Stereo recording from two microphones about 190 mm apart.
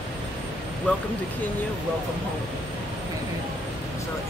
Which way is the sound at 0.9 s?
10° left (ahead or behind).